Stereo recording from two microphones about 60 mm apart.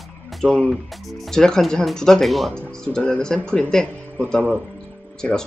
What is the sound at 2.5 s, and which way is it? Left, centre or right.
Speech, centre.